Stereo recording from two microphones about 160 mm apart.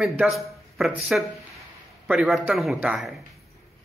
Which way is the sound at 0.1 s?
Centre (ahead or behind).